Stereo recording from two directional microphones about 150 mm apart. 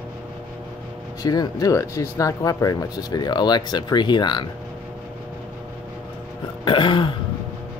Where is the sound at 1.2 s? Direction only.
25° left (ahead or behind).